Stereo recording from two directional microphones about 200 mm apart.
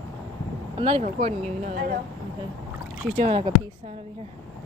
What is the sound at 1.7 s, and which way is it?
Speech, 45° right (ahead or behind).